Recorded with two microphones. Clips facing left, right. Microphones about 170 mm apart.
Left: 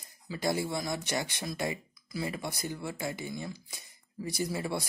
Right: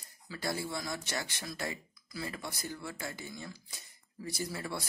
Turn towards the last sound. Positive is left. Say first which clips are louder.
# left 5 dB
turn(degrees=15)  # may be behind; listen again after turning